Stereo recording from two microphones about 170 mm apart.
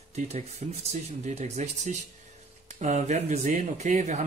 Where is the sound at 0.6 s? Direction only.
45° right (ahead or behind).